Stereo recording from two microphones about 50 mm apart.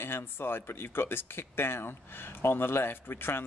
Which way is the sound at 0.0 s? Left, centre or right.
Left.